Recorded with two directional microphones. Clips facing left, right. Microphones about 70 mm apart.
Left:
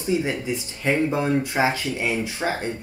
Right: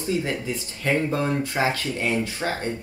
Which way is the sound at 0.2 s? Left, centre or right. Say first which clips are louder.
Left 2 dB; centre.